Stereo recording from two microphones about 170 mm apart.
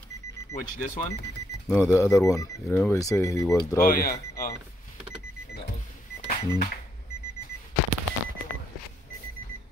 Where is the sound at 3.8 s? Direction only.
60° left (ahead or behind).